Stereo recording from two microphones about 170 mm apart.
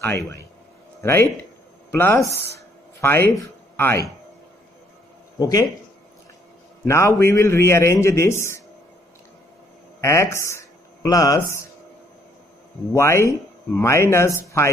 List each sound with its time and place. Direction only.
0.0 s speech: 15° left (ahead or behind)
5.4 s speech: 20° left (ahead or behind)
6.9 s speech: 15° left (ahead or behind)
9.9 s speech: 15° left (ahead or behind)
12.9 s speech: 15° left (ahead or behind)